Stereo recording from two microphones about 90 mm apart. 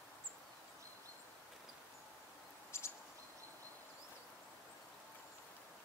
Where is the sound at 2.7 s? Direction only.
30° left (ahead or behind).